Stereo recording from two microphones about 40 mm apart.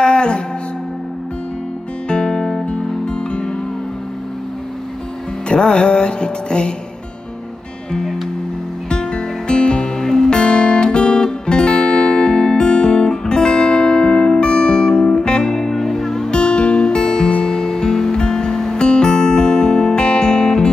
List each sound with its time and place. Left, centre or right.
0.0 s music: left
2.0 s music: centre
5.5 s music: left
8.8 s music: left
10.4 s music: left
16.3 s music: left